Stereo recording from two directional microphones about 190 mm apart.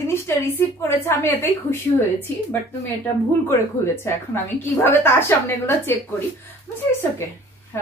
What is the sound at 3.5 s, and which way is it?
A woman's voice, 15° left (ahead or behind).